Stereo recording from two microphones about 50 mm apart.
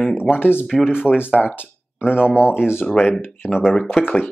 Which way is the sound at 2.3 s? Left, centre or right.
Left.